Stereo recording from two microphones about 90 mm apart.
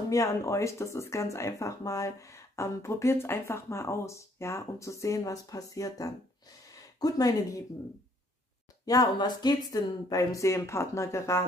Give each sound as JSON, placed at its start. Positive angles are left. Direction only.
{"t": 0.1, "sound": "speech", "side_deg": 35}
{"t": 8.8, "sound": "speech", "side_deg": 45}